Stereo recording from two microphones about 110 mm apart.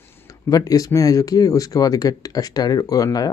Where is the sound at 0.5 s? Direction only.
35° left (ahead or behind).